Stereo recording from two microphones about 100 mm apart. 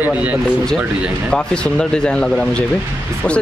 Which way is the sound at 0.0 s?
15° right (ahead or behind).